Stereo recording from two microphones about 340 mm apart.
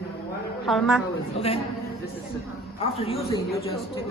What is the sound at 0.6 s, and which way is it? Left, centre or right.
Speech, centre.